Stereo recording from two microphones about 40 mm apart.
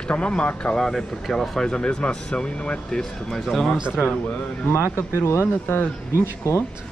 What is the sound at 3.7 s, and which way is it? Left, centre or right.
Speech, centre.